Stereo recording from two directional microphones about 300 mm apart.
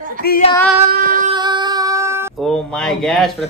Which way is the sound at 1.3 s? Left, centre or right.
Centre.